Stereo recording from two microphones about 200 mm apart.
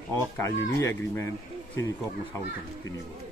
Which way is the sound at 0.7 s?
15° left (ahead or behind).